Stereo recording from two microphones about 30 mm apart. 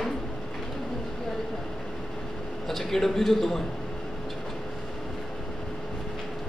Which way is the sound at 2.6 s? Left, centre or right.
Centre.